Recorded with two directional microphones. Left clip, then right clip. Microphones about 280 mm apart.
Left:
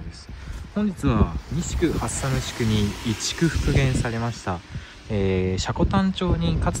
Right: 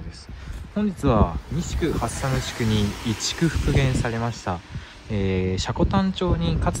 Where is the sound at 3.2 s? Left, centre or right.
Centre.